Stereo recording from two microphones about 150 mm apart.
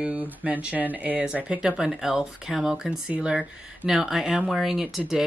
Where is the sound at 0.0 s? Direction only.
10° right (ahead or behind).